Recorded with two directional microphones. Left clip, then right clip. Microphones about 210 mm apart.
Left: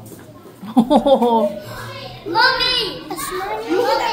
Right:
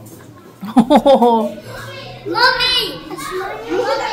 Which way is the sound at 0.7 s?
25° right (ahead or behind).